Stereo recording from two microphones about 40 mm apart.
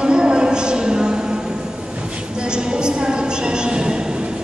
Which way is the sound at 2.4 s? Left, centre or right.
Right.